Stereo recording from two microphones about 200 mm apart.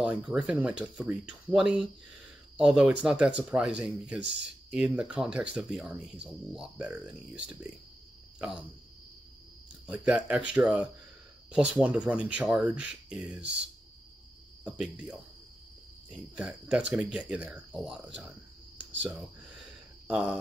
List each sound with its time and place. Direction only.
0.0 s speech: 5° right (ahead or behind)
9.8 s speech: 5° right (ahead or behind)
14.6 s speech: 5° right (ahead or behind)
16.3 s speech: 5° right (ahead or behind)
20.1 s speech: 5° right (ahead or behind)